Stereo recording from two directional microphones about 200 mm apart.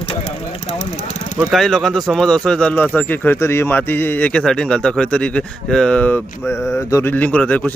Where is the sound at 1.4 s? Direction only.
Centre (ahead or behind).